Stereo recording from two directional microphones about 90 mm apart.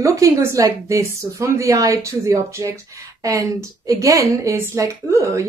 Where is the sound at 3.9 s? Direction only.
35° right (ahead or behind).